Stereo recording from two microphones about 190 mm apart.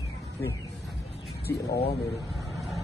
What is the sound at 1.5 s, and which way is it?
Speech, 15° left (ahead or behind).